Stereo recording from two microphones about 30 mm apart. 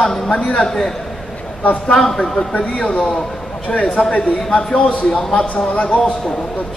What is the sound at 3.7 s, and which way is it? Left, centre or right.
A man's voice, left.